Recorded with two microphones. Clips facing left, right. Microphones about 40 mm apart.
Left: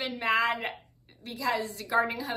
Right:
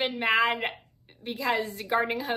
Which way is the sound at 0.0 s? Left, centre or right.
Right.